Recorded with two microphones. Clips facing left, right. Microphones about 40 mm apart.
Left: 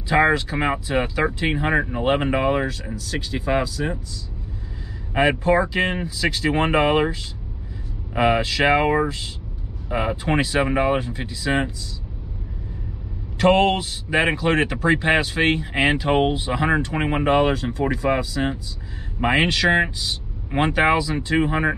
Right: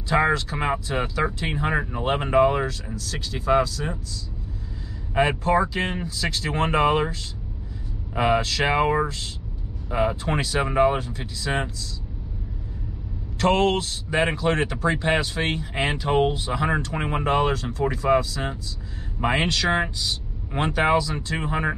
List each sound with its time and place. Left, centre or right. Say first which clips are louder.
0.1 s speech: left 3 dB; centre
5.4 s speech: left 3 dB; centre
8.2 s speech: left 3 dB; centre
13.4 s a man's voice: left 3 dB; centre